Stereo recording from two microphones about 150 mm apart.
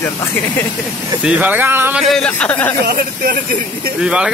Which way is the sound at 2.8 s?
80° right.